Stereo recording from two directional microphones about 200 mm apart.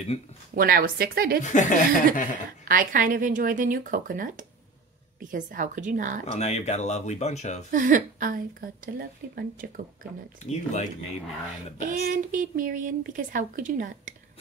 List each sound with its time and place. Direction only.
0.6 s a woman's voice: 45° right (ahead or behind)
1.4 s speech: 40° left (ahead or behind)
2.7 s a woman's voice: 45° right (ahead or behind)
6.3 s speech: 35° left (ahead or behind)
7.7 s a woman's voice: 40° right (ahead or behind)
10.5 s speech: 35° left (ahead or behind)
11.8 s speech: 40° right (ahead or behind)